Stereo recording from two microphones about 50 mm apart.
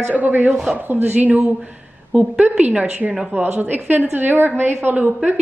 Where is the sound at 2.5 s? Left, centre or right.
Right.